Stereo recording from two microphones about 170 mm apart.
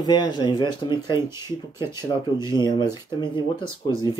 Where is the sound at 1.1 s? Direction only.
15° right (ahead or behind).